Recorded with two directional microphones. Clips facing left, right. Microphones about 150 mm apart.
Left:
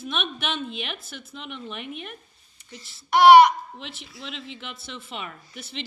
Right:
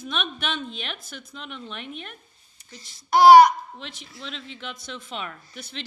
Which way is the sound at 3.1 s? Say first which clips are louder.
Right 1 dB; 35° right (ahead or behind).